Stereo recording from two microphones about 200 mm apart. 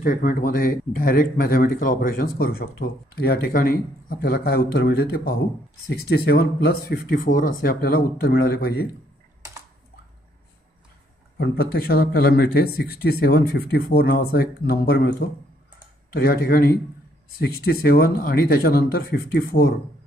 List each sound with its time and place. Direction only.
0.0 s speech: 45° left (ahead or behind)
11.3 s speech: 55° left (ahead or behind)
17.8 s speech: 50° left (ahead or behind)